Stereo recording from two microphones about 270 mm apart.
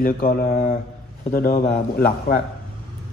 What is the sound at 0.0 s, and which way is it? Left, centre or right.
A man's voice, left.